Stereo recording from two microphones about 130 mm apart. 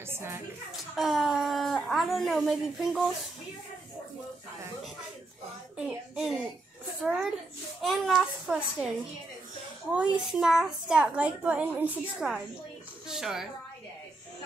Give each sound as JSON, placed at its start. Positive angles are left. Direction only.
{"t": 0.1, "sound": "music", "side_deg": -20}
{"t": 0.9, "sound": "speech", "side_deg": 0}
{"t": 5.8, "sound": "a child's voice", "side_deg": -5}
{"t": 9.9, "sound": "a woman's voice", "side_deg": -5}